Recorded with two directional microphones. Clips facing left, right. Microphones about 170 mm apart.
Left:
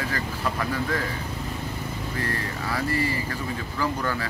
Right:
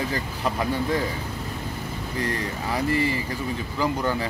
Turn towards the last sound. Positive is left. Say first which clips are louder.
# right 3 dB
turn(degrees=-20)  # may be behind; listen again after turning